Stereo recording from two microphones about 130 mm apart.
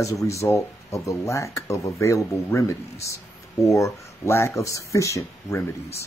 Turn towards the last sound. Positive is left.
turn(degrees=25)  # may be behind; listen again after turning